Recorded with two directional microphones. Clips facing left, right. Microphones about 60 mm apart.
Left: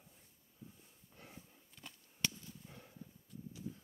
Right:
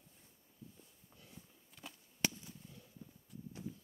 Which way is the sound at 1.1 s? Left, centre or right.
Left.